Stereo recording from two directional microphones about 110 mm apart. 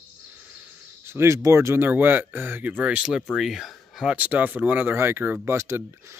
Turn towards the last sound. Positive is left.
turn(degrees=-25)  # may be behind; listen again after turning